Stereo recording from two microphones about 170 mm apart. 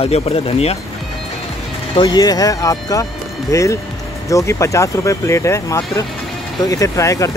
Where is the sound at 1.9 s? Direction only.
25° left (ahead or behind).